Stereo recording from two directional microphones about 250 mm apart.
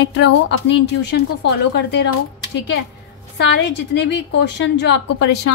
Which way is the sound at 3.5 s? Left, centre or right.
Left.